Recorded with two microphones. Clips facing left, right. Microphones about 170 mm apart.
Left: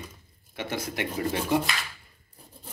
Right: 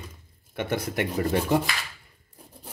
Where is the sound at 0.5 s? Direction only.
55° right (ahead or behind).